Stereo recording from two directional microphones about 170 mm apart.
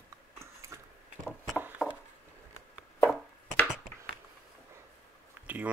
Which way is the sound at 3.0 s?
15° left (ahead or behind).